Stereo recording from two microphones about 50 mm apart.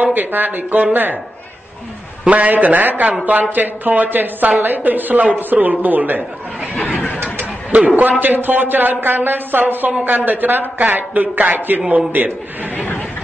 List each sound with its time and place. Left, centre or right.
0.0 s speech: right
2.2 s speech: right
6.7 s a sound: centre
7.7 s speech: right